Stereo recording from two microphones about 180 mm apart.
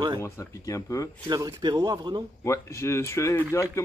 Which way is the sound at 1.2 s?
20° right (ahead or behind).